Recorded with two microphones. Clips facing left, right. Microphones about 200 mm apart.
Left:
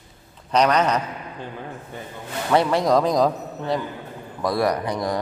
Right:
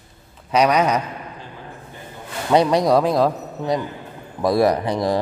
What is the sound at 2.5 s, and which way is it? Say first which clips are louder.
Speech: right 3 dB; 15° right (ahead or behind).